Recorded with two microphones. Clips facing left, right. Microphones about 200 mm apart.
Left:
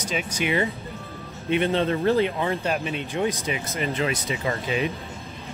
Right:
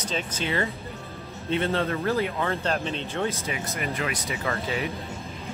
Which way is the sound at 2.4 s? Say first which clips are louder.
Left 2 dB; 15° left (ahead or behind).